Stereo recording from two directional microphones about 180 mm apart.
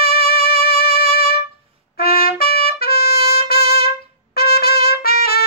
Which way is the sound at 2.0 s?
55° left (ahead or behind).